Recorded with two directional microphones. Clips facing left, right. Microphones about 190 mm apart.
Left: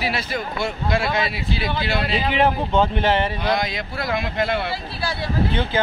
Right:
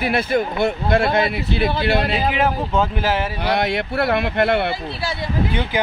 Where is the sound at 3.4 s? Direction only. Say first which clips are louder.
Right 3 dB; 65° right (ahead or behind).